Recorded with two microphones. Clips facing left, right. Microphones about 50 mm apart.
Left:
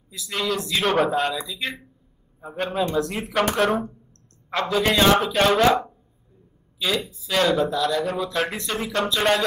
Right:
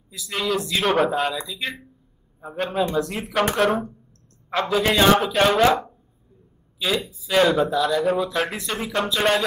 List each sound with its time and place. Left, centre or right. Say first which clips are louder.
0.1 s speech: right 1 dB; centre
6.8 s speech: right 1 dB; centre